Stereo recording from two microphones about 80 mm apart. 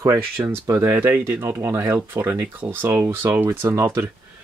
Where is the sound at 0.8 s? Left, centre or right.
Right.